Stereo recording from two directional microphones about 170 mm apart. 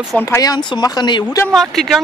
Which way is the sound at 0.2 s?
20° left (ahead or behind).